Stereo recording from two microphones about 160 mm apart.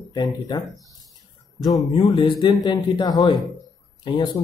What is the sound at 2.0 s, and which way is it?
Speech, 30° left (ahead or behind).